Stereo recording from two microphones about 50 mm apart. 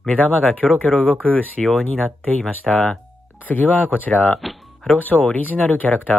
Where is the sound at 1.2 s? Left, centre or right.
Left.